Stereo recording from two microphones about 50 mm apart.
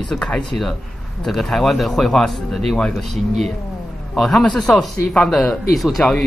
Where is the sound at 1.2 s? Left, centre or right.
Centre.